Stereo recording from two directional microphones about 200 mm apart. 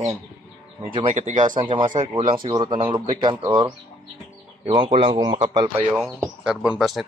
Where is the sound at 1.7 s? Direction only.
20° right (ahead or behind).